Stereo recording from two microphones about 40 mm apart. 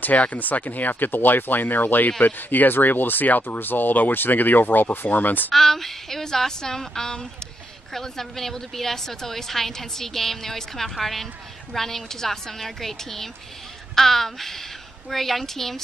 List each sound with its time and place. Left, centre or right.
0.0 s speech: left
5.5 s a woman's voice: centre